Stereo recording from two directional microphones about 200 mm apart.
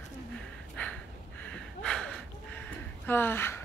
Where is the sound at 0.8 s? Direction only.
10° left (ahead or behind).